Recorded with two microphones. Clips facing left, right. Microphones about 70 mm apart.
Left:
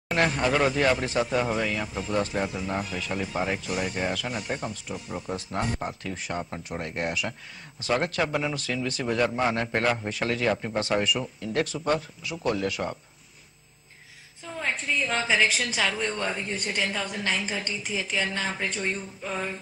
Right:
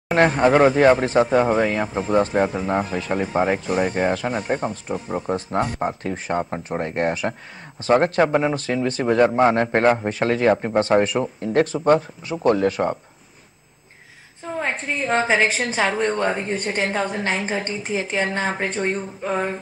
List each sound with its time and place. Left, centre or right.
0.1 s speech: right
14.4 s speech: right